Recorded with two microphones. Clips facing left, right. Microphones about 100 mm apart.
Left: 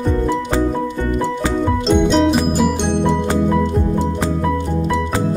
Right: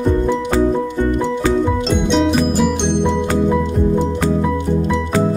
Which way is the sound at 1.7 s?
Centre (ahead or behind).